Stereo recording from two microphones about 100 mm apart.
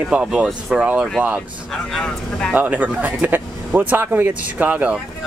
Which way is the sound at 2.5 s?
15° right (ahead or behind).